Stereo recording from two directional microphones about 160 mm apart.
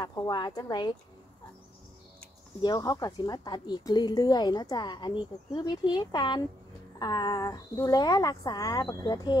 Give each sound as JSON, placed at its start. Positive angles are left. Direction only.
{"t": 0.0, "sound": "a woman's voice", "side_deg": 25}
{"t": 2.6, "sound": "a woman's voice", "side_deg": 25}